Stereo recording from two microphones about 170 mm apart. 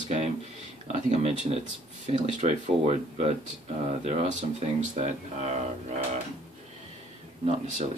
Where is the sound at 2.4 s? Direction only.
45° right (ahead or behind).